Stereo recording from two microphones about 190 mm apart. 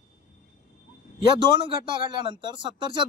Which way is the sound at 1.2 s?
25° right (ahead or behind).